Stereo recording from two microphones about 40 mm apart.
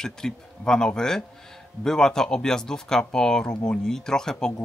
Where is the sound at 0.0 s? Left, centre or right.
Centre.